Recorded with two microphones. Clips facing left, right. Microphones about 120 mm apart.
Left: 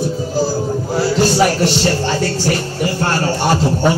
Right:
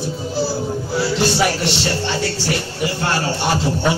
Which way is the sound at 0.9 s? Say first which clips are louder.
Left 4 dB; 40° left (ahead or behind).